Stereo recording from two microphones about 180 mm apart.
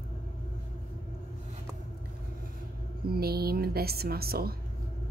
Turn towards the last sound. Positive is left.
turn(degrees=-60)  # may be behind; listen again after turning